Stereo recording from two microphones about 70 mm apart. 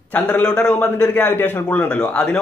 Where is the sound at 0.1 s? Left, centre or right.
Centre.